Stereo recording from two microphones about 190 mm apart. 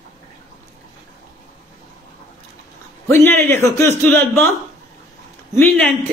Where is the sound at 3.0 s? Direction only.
10° left (ahead or behind).